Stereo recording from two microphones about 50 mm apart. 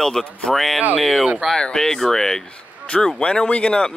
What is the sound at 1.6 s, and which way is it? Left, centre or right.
Speech, centre.